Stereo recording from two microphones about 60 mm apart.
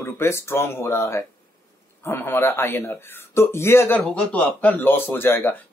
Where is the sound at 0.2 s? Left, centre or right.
Left.